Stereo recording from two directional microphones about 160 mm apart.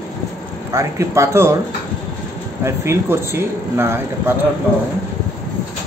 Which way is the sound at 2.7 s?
15° right (ahead or behind).